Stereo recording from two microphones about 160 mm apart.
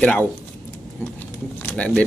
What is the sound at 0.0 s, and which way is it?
Speech, 10° left (ahead or behind).